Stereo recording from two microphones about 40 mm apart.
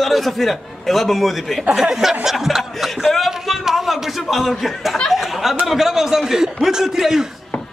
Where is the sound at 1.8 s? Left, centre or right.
Centre.